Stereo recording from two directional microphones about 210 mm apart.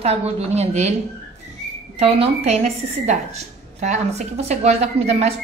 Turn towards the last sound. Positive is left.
turn(degrees=-30)  # may be behind; listen again after turning